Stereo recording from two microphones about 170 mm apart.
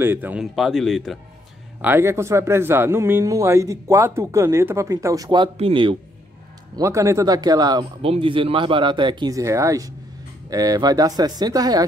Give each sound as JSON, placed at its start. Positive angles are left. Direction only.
{"t": 0.0, "sound": "speech", "side_deg": -10}
{"t": 1.8, "sound": "speech", "side_deg": -15}
{"t": 6.7, "sound": "speech", "side_deg": -20}